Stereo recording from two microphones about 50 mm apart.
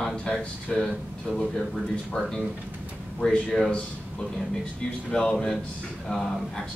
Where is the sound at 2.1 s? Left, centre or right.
Centre.